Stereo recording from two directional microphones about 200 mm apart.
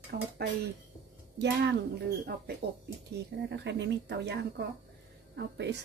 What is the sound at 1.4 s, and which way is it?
Speech, 60° right (ahead or behind).